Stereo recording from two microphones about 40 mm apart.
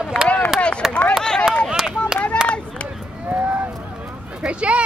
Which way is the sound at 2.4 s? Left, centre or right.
Left.